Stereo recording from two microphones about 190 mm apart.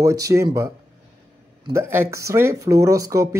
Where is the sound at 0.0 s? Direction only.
15° right (ahead or behind).